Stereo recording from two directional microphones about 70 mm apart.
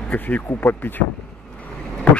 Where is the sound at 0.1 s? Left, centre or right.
Left.